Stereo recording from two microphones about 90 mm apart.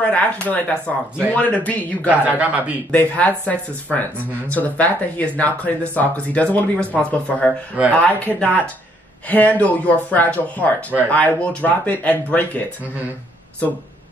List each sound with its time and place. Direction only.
0.0 s speech: 15° left (ahead or behind)
2.0 s a man's voice: 15° right (ahead or behind)
2.9 s speech: 15° left (ahead or behind)